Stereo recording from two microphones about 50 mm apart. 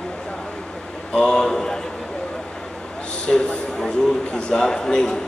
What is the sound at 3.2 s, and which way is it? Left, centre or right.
A man's voice, centre.